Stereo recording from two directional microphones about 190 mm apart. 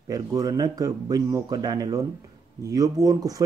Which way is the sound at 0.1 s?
20° right (ahead or behind).